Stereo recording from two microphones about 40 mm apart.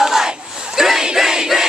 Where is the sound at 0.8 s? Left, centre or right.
Centre.